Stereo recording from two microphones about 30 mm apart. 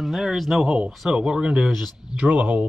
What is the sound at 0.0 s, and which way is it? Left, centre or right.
Speech, centre.